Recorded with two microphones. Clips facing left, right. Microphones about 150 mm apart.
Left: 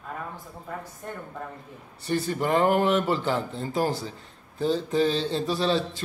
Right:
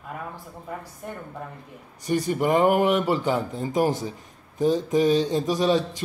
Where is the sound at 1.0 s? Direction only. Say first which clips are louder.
Right 1 dB; 10° right (ahead or behind).